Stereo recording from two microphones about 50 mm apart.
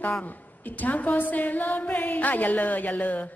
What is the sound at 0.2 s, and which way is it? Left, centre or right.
A woman's voice, left.